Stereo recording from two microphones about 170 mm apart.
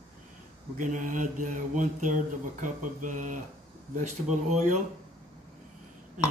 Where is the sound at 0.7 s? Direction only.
50° right (ahead or behind).